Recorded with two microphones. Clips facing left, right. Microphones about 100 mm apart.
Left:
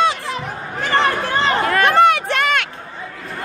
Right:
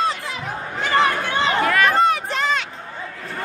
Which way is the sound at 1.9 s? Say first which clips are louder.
Left 4 dB; 75° left (ahead or behind).